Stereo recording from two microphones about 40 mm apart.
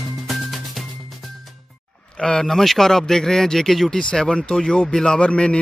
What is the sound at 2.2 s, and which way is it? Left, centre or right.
A man's voice, centre.